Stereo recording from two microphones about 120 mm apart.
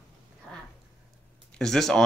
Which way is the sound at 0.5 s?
10° left (ahead or behind).